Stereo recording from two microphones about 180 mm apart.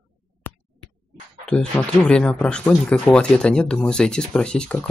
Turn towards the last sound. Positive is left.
turn(degrees=5)  # may be behind; listen again after turning